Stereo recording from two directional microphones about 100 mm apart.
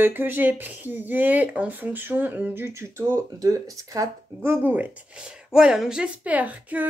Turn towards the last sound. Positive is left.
turn(degrees=-15)  # may be behind; listen again after turning